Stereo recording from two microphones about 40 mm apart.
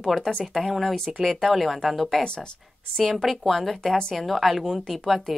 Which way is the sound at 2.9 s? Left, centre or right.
Centre.